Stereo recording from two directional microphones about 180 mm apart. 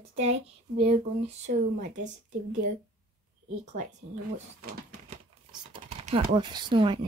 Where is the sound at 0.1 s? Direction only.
35° right (ahead or behind).